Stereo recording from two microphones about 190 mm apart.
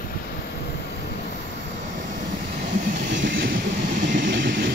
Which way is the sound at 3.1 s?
65° right (ahead or behind).